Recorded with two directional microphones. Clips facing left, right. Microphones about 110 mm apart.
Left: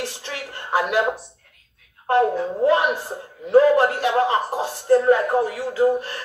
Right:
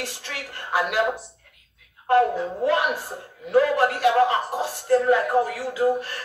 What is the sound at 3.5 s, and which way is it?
Speech, 35° left (ahead or behind).